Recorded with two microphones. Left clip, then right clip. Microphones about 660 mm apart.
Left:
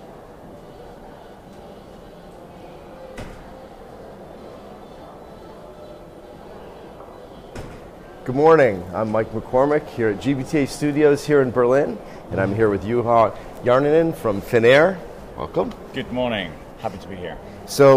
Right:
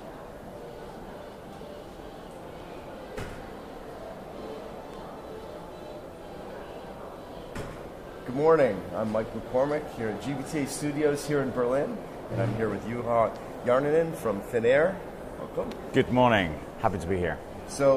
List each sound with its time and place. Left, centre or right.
8.4 s speech: left
15.9 s speech: right
17.8 s speech: left